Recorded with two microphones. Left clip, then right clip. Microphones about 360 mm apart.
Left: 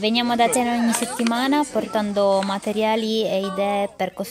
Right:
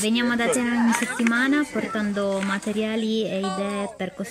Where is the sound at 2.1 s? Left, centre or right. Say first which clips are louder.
Left 9 dB; left.